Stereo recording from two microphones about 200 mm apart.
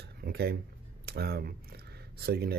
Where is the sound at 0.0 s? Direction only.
55° right (ahead or behind).